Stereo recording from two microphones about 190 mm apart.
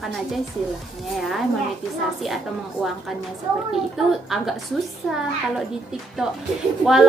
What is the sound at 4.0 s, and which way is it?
Speech, centre (ahead or behind).